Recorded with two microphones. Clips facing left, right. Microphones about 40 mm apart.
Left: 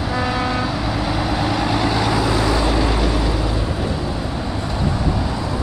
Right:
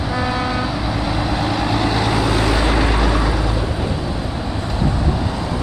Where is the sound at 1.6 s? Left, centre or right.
Centre.